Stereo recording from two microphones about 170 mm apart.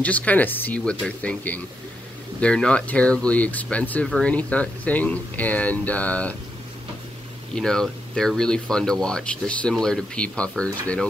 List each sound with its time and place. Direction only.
0.0 s speech: 10° left (ahead or behind)
7.5 s speech: 5° left (ahead or behind)